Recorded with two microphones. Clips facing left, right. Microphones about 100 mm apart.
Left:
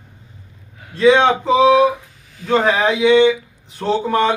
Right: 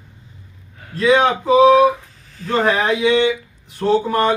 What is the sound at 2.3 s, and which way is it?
Speech, 5° left (ahead or behind).